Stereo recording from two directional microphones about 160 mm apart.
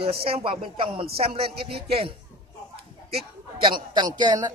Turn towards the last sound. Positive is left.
turn(degrees=-25)  # may be behind; listen again after turning